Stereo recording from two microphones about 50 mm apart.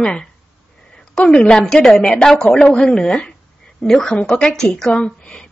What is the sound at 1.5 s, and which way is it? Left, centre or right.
A woman's voice, centre.